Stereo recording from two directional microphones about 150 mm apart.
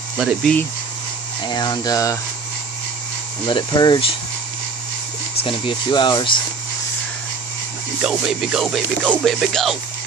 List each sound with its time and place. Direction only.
0.2 s music: 5° right (ahead or behind)
1.4 s speech: 30° left (ahead or behind)
3.4 s speech: 30° left (ahead or behind)
5.4 s speech: 35° left (ahead or behind)
8.0 s music: centre (ahead or behind)